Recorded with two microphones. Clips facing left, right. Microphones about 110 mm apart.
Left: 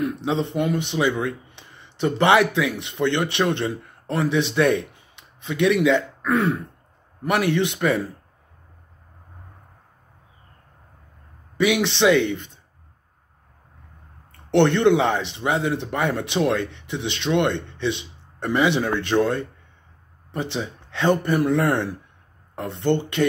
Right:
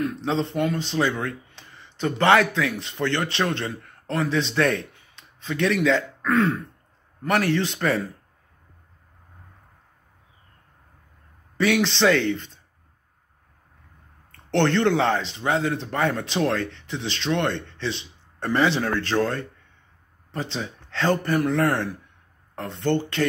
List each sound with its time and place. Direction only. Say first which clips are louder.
0.5 s speech: left 2 dB; 15° left (ahead or behind)
11.5 s speech: left 1 dB; 15° left (ahead or behind)
14.5 s a man's voice: left 4 dB; 15° left (ahead or behind)